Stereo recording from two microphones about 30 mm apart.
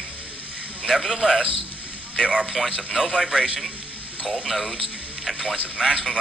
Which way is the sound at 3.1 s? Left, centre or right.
Centre.